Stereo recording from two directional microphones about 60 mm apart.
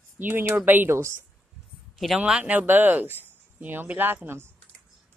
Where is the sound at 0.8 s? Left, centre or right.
Right.